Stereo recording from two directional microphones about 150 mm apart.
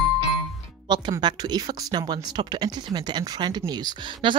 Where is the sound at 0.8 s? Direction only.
30° right (ahead or behind).